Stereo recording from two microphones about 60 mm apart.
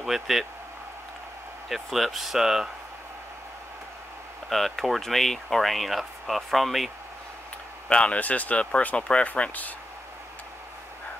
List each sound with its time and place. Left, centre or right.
0.0 s speech: centre
1.7 s speech: centre
4.5 s speech: centre
7.9 s speech: centre